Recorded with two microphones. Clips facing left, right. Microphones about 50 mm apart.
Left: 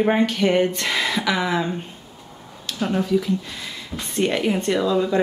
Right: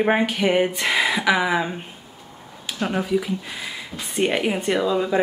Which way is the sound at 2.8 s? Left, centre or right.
Centre.